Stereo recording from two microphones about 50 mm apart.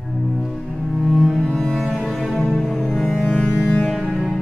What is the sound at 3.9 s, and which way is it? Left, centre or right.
Music, centre.